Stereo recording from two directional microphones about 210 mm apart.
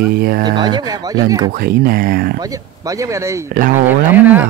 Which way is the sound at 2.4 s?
15° right (ahead or behind).